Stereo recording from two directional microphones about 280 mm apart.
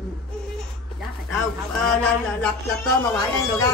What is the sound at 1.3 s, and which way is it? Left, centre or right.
A woman's voice, centre.